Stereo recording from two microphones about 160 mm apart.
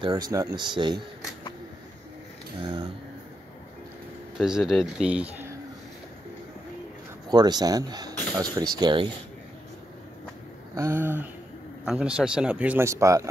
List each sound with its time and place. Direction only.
0.0 s speech: 25° right (ahead or behind)
2.6 s speech: 30° right (ahead or behind)
4.4 s speech: 5° right (ahead or behind)
7.2 s speech: 25° right (ahead or behind)
10.7 s a man's voice: 15° right (ahead or behind)